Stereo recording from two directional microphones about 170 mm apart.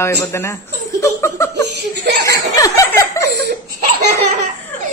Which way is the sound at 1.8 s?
80° right.